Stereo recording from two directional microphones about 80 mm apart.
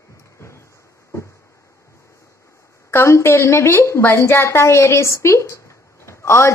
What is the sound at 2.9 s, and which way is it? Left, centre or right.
A woman's voice, left.